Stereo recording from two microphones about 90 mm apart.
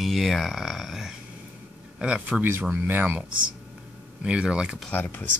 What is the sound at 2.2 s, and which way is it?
Speech, 20° right (ahead or behind).